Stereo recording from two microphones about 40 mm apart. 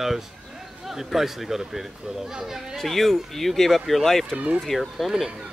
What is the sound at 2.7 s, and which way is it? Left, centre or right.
Speech, centre.